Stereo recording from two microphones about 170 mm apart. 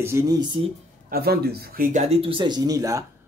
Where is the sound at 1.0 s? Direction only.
60° right (ahead or behind).